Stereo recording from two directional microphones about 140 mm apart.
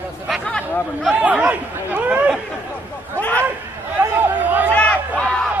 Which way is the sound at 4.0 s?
10° right (ahead or behind).